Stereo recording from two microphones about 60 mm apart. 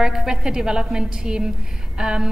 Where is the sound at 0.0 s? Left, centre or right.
Centre.